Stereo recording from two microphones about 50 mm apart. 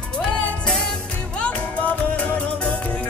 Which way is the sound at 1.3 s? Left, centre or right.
Left.